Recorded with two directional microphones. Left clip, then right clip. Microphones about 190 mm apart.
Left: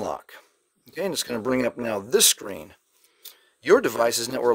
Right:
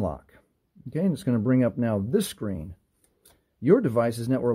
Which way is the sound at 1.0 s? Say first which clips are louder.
Left 2 dB; 20° left (ahead or behind).